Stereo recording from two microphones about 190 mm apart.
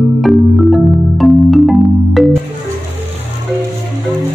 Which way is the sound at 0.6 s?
Centre (ahead or behind).